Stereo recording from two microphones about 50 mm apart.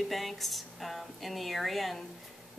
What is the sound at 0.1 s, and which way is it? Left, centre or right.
A woman's voice, centre.